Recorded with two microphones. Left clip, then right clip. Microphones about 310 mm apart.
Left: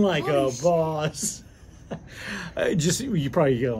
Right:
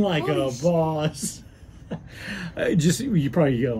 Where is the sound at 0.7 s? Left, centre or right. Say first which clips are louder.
Right 1 dB; centre.